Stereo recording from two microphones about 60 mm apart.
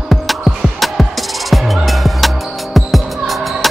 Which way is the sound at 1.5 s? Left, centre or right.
Centre.